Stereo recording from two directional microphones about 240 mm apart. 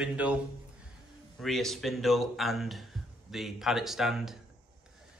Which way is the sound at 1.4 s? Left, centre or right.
Centre.